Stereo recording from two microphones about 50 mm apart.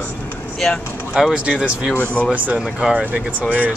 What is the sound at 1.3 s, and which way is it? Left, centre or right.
Speech, right.